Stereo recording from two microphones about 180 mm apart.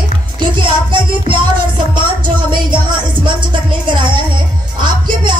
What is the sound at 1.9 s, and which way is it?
Music, 25° right (ahead or behind).